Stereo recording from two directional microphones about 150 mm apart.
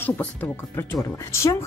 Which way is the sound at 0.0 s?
15° left (ahead or behind).